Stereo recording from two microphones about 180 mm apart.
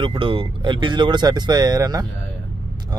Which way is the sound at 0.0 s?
30° right (ahead or behind).